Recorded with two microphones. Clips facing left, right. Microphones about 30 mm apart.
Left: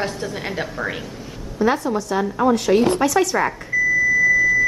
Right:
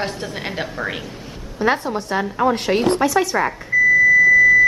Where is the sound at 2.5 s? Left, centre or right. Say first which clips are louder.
Left 3 dB; right.